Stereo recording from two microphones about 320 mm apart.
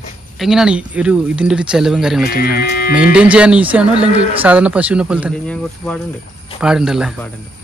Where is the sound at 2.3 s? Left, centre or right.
Left.